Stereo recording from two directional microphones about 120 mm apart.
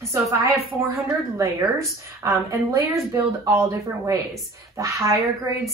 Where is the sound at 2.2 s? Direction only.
25° right (ahead or behind).